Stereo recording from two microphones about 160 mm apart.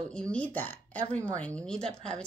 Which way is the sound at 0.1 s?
5° left (ahead or behind).